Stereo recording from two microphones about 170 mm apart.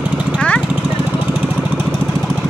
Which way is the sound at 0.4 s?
5° left (ahead or behind).